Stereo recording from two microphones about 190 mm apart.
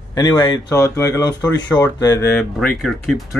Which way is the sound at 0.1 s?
15° left (ahead or behind).